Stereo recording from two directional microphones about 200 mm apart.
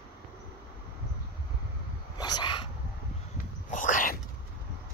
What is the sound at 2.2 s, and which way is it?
Dog, 20° left (ahead or behind).